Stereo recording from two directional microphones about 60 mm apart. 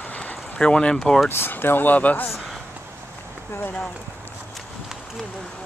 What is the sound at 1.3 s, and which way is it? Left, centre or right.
Speech, left.